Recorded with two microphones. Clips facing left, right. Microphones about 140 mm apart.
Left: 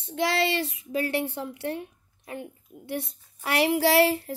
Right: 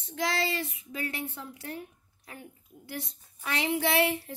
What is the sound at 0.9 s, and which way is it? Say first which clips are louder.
Speech: left 9 dB; 30° left (ahead or behind).